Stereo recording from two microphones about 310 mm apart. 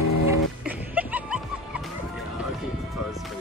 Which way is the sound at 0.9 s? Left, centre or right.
Centre.